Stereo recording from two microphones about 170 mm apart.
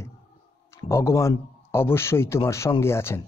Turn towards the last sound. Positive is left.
turn(degrees=15)  # may be behind; listen again after turning